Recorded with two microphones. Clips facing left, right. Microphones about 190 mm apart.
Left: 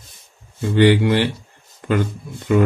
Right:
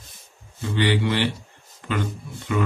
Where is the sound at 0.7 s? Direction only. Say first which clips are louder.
Left 8 dB; 50° left (ahead or behind).